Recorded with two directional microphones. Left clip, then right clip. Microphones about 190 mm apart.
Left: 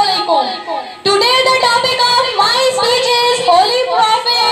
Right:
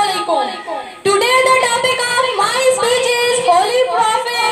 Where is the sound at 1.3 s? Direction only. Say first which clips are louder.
Even; 40° right (ahead or behind).